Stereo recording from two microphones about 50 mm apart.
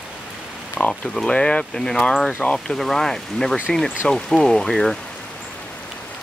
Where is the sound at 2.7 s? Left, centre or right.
Centre.